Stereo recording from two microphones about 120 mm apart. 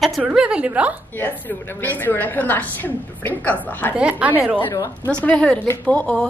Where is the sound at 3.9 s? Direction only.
10° right (ahead or behind).